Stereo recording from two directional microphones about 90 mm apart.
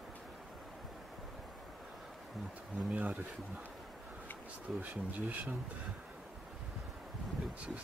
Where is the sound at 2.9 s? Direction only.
15° right (ahead or behind).